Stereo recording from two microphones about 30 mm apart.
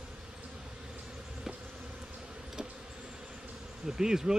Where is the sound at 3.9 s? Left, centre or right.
Centre.